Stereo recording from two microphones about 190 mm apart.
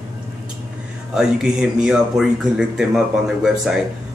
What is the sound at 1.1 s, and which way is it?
Speech, 5° right (ahead or behind).